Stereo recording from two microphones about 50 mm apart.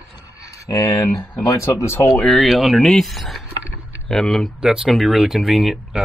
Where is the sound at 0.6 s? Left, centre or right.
Left.